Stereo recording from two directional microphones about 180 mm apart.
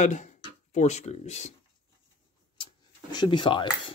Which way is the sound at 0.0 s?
40° left (ahead or behind).